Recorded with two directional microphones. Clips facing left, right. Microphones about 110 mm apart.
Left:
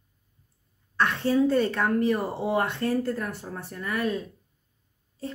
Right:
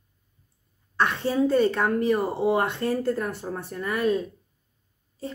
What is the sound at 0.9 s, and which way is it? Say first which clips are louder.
Speech: even; 15° right (ahead or behind).